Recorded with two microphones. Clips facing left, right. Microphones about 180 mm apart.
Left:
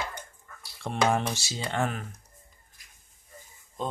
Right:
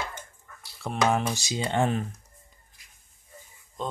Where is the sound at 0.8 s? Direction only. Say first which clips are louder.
Right 1 dB; 5° right (ahead or behind).